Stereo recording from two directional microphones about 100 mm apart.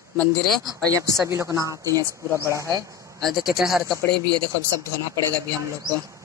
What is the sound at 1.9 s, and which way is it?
Speech, 30° left (ahead or behind).